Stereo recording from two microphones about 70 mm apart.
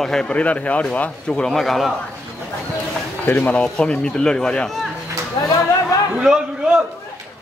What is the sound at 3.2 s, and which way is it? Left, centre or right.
Speech, left.